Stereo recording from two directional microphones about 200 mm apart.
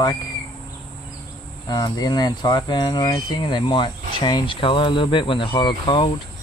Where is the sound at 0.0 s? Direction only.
20° left (ahead or behind).